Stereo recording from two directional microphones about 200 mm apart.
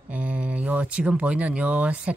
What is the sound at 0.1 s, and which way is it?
A man's voice, 5° right (ahead or behind).